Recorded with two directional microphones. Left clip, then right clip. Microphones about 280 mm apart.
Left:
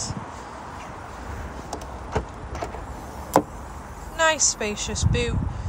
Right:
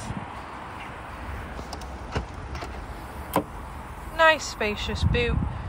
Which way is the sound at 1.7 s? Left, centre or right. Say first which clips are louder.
Left 6 dB; left.